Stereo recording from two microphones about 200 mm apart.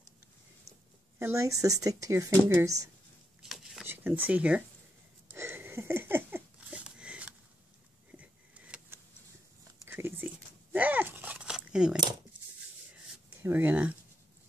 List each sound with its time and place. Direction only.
1.2 s speech: 15° right (ahead or behind)
3.4 s a sound: centre (ahead or behind)
9.8 s biting: 10° right (ahead or behind)
12.9 s writing: 10° right (ahead or behind)